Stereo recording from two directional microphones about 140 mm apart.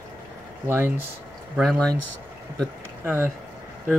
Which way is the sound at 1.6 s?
5° left (ahead or behind).